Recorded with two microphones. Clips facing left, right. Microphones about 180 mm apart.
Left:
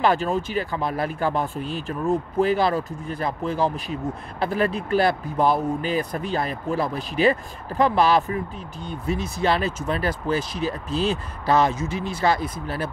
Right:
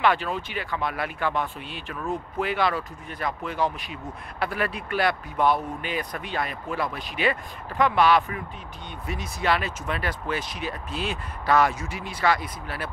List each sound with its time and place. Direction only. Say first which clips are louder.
0.0 s speech: left 3 dB; 40° left (ahead or behind)
11.5 s speech: left 2 dB; 20° left (ahead or behind)